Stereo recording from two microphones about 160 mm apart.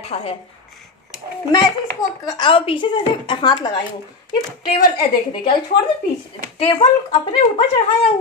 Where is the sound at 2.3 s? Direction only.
30° left (ahead or behind).